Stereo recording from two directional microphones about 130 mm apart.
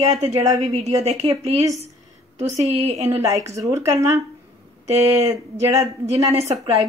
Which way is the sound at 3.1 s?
25° right (ahead or behind).